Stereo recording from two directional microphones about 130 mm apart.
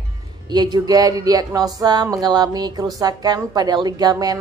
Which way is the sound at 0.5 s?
35° right (ahead or behind).